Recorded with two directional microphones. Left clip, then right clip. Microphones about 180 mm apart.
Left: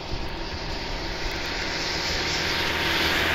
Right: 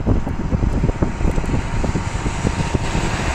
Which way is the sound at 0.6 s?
35° right (ahead or behind).